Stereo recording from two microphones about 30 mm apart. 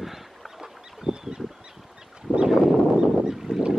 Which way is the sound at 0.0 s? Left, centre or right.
Centre.